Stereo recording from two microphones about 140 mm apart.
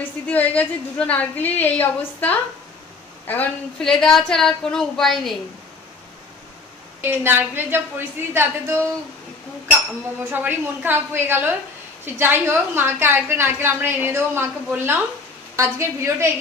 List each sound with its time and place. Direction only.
0.3 s a woman's voice: 10° left (ahead or behind)
7.0 s a woman's voice: 15° right (ahead or behind)
10.3 s a woman's voice: 10° right (ahead or behind)